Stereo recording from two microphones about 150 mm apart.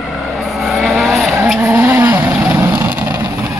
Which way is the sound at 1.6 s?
15° right (ahead or behind).